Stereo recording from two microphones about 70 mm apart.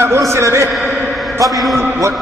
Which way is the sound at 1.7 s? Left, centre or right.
Right.